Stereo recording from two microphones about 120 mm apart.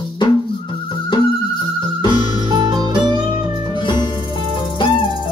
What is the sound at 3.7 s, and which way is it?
Music, 40° left (ahead or behind).